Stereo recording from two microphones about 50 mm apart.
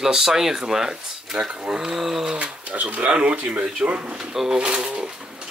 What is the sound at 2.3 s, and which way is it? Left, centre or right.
Speech, right.